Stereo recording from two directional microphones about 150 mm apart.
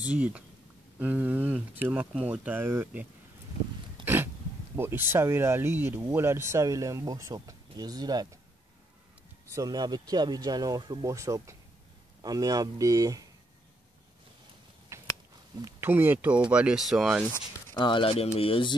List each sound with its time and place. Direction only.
0.0 s speech: 10° right (ahead or behind)
4.0 s throat clearing: 15° right (ahead or behind)
4.7 s speech: 15° right (ahead or behind)
9.5 s speech: 25° right (ahead or behind)
14.9 s biting: 20° right (ahead or behind)
15.6 s speech: 15° right (ahead or behind)
17.7 s speech: 35° left (ahead or behind)